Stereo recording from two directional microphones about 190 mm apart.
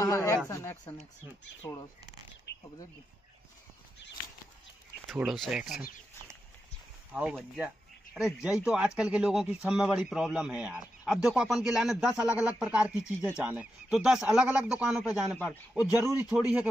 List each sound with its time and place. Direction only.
0.0 s speech: 15° left (ahead or behind)
5.1 s speech: centre (ahead or behind)
7.1 s speech: 5° right (ahead or behind)
15.3 s speech: 5° left (ahead or behind)
15.7 s a man's voice: 10° right (ahead or behind)